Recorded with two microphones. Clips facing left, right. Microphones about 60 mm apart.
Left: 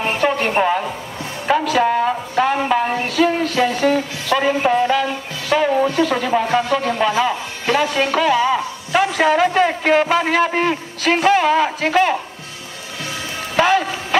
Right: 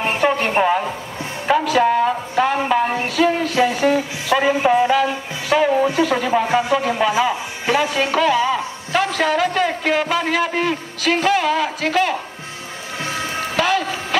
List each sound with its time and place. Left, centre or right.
0.0 s a sound: centre
0.5 s a woman's voice: centre
1.5 s music: centre
2.4 s a sound: centre
3.0 s music: centre
3.5 s a sound: centre
5.9 s speech: centre
8.4 s a man's voice: left
13.0 s music: right
13.6 s speech: left